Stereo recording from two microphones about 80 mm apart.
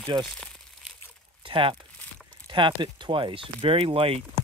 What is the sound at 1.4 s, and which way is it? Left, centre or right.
Speech, right.